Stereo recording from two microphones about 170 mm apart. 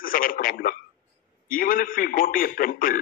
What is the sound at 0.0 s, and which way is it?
Speech, 55° left (ahead or behind).